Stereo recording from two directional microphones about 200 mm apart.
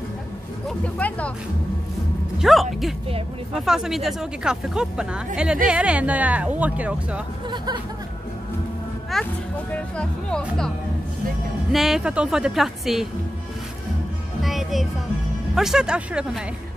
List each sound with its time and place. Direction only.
0.7 s speech: 5° left (ahead or behind)
2.3 s speech: centre (ahead or behind)
7.5 s speech: 20° right (ahead or behind)
9.1 s speech: centre (ahead or behind)
11.7 s speech: centre (ahead or behind)
14.4 s music: centre (ahead or behind)
15.5 s speech: centre (ahead or behind)